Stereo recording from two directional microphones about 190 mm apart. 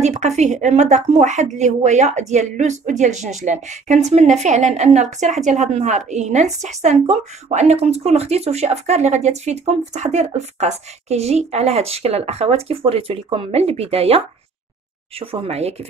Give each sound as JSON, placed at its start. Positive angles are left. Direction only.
{"t": 0.0, "sound": "speech", "side_deg": -35}